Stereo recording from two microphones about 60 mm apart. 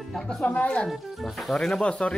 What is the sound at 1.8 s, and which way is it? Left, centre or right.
Speech, centre.